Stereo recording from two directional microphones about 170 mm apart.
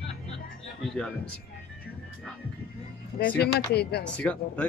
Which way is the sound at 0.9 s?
5° left (ahead or behind).